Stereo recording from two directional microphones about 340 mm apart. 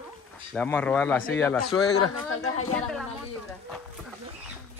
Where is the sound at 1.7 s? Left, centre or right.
Left.